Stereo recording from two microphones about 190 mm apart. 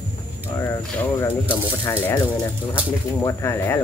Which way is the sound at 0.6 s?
10° left (ahead or behind).